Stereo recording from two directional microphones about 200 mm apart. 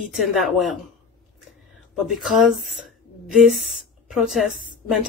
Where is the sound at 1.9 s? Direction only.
Centre (ahead or behind).